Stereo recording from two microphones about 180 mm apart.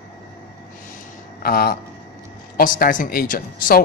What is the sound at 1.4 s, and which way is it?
A man's voice, 60° left (ahead or behind).